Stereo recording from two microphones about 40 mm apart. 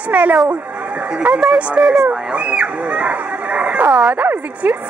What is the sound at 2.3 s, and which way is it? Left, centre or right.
A woman's voice, right.